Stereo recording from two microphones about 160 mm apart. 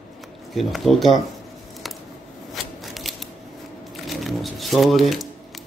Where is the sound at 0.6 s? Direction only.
Centre (ahead or behind).